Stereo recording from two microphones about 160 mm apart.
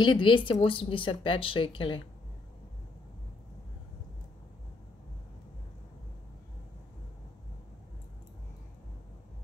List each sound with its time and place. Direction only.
0.0 s speech: 30° left (ahead or behind)